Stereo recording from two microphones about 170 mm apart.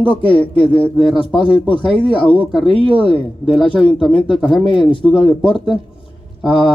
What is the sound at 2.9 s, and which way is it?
Speech, 30° left (ahead or behind).